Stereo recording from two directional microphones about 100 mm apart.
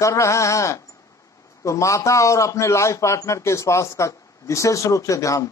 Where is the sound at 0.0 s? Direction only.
30° left (ahead or behind).